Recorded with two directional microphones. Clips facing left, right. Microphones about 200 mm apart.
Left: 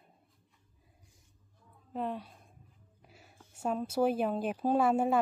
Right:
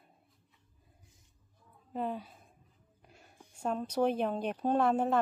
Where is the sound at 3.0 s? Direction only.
5° left (ahead or behind).